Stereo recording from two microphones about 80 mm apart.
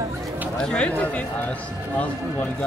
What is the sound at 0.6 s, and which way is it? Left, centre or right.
Speech, centre.